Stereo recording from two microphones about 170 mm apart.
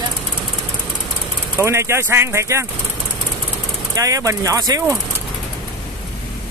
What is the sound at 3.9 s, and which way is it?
Speech, 20° right (ahead or behind).